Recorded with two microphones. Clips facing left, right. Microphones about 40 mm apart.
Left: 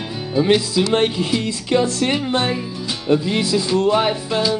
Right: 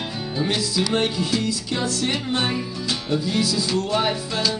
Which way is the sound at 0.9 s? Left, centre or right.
Left.